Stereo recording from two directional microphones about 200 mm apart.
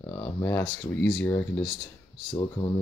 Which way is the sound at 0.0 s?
15° left (ahead or behind).